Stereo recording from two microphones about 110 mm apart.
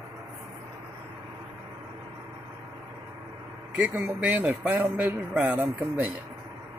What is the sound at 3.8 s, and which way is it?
Speech, 15° right (ahead or behind).